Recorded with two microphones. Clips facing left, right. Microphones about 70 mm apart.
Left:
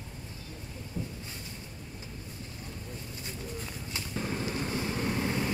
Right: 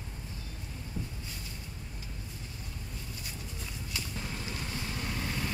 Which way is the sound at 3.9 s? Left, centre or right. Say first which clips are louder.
Left 6 dB; left.